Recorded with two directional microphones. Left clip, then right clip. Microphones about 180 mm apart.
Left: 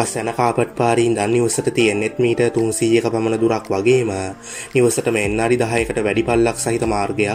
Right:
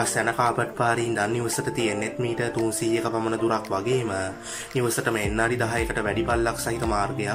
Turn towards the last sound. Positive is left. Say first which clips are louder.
# left 7 dB
turn(degrees=20)  # may be behind; listen again after turning